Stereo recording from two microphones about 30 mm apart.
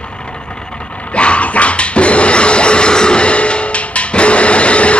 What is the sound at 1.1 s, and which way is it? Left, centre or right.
Dog, left.